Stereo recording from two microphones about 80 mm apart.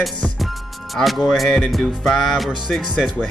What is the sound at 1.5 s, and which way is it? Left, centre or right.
Speech, centre.